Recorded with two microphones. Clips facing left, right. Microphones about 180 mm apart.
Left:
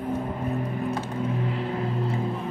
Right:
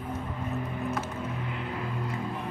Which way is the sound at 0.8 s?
30° left (ahead or behind).